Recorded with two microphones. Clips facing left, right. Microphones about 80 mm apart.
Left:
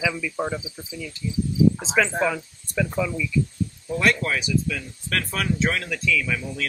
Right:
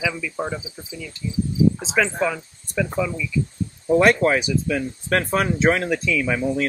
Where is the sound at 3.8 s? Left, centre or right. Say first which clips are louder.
Right 8 dB; right.